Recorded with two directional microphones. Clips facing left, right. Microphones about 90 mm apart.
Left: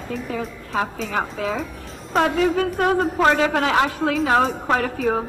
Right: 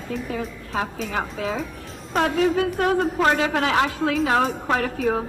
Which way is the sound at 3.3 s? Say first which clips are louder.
Left 2 dB; 40° left (ahead or behind).